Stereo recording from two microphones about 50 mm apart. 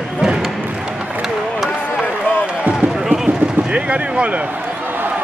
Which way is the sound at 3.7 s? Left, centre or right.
Right.